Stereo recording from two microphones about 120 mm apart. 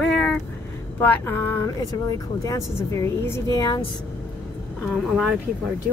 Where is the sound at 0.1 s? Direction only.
5° left (ahead or behind).